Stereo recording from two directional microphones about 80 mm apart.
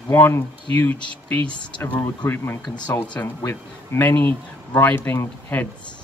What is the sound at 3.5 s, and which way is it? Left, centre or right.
Speech, left.